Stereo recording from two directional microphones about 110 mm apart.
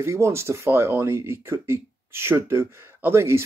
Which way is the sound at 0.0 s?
25° right (ahead or behind).